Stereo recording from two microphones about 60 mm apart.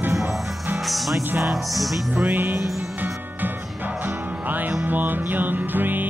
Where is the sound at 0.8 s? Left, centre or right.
Centre.